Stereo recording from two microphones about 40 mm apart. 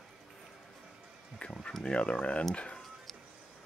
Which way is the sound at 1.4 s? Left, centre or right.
Left.